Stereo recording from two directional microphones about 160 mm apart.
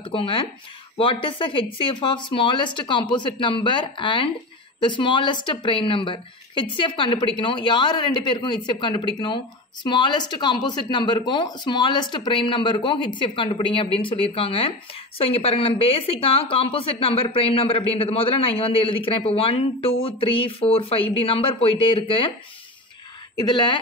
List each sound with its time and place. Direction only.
0.0 s speech: 35° left (ahead or behind)
23.3 s speech: 25° left (ahead or behind)